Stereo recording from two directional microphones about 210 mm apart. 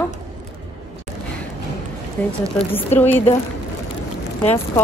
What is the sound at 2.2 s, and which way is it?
Speech, 5° left (ahead or behind).